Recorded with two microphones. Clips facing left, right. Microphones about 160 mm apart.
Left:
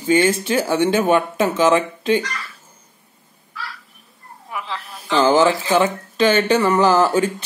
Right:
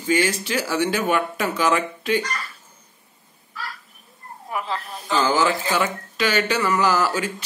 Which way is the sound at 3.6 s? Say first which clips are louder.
Even; 45° right (ahead or behind).